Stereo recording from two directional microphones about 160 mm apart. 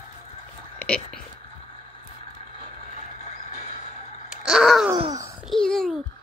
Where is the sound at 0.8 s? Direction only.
5° left (ahead or behind).